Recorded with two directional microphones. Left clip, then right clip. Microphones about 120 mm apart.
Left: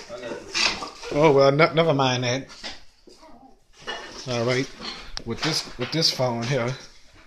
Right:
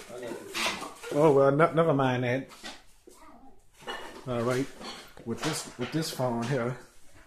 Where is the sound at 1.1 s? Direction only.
15° right (ahead or behind).